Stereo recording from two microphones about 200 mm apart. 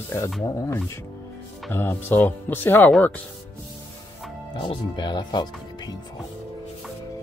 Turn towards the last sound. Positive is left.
turn(degrees=20)  # may be behind; listen again after turning